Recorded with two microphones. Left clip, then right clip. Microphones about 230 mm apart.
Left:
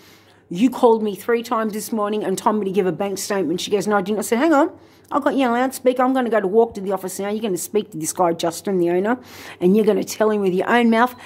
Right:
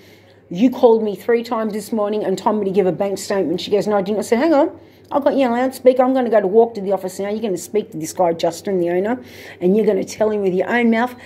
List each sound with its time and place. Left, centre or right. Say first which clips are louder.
0.6 s a woman's voice: right 3 dB; left